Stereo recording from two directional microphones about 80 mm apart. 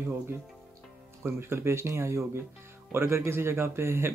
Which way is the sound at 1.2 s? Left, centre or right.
Right.